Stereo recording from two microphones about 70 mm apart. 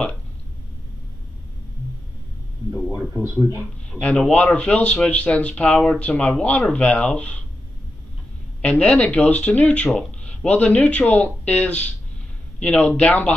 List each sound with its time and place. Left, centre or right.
4.0 s speech: centre
8.5 s speech: centre